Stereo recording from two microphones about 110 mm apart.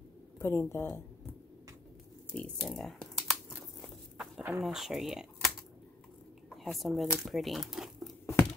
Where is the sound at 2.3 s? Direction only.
5° left (ahead or behind).